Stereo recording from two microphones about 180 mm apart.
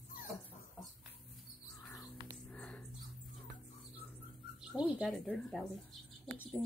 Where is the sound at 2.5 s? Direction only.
5° left (ahead or behind).